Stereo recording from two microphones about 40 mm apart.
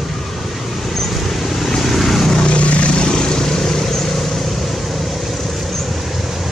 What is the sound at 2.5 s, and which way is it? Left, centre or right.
Vehicle, left.